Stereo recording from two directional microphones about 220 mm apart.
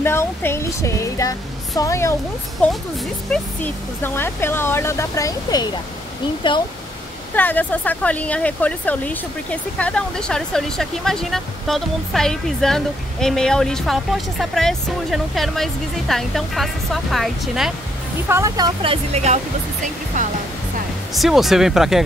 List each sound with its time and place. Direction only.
0.0 s speech: 10° left (ahead or behind)
3.3 s speech: 10° left (ahead or behind)
7.3 s speech: 10° left (ahead or behind)
18.3 s speech: 15° right (ahead or behind)
20.2 s music: 35° right (ahead or behind)
21.1 s speech: centre (ahead or behind)